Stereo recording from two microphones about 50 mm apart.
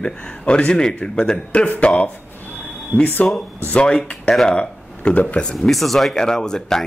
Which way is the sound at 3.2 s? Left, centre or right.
Left.